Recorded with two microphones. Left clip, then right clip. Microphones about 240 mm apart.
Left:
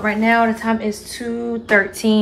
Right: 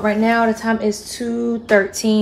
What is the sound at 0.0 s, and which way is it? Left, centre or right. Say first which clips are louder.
A woman's voice: even; centre.